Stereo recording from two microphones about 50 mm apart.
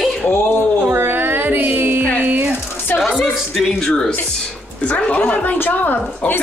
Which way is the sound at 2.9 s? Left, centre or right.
Centre.